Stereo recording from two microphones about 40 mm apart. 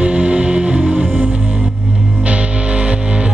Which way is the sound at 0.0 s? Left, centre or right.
Right.